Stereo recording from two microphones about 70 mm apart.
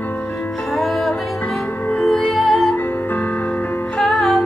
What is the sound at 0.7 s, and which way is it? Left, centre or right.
Music, centre.